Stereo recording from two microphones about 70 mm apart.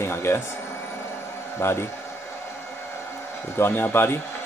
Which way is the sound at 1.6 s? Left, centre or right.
Left.